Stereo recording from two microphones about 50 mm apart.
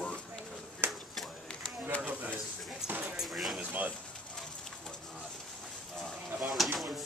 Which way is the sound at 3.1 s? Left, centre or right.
Centre.